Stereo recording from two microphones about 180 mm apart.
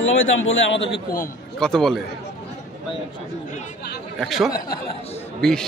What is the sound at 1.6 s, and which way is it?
Speech, 5° left (ahead or behind).